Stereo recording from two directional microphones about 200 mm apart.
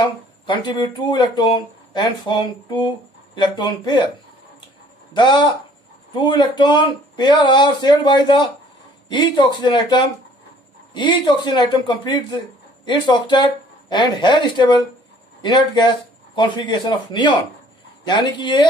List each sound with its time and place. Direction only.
0.5 s speech: 25° left (ahead or behind)
5.1 s speech: 25° left (ahead or behind)
9.6 s speech: 20° left (ahead or behind)